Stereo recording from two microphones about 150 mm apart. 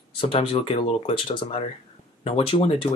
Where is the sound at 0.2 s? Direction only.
40° left (ahead or behind).